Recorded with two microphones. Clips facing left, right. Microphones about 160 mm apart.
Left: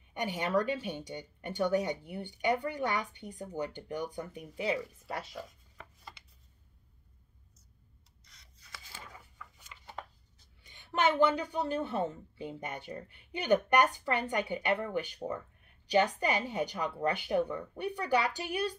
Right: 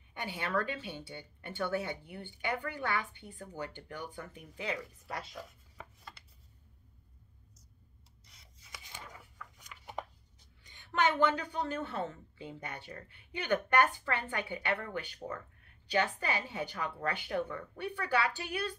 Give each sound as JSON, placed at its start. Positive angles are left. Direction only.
{"t": 0.2, "sound": "speech", "side_deg": 15}
{"t": 5.3, "sound": "chopping", "side_deg": 0}
{"t": 8.6, "sound": "a sound", "side_deg": -20}
{"t": 9.7, "sound": "chopping", "side_deg": 0}
{"t": 11.1, "sound": "speech", "side_deg": 10}